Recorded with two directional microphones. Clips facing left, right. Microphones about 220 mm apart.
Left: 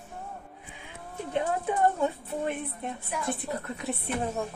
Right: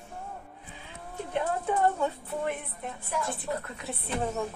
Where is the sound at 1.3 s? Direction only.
20° left (ahead or behind).